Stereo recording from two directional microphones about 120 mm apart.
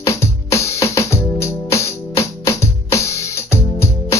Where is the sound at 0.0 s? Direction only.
25° left (ahead or behind).